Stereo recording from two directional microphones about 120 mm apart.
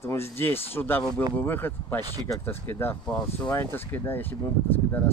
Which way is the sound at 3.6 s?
20° left (ahead or behind).